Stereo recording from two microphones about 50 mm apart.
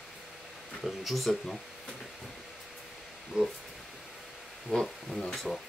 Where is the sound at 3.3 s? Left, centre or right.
Centre.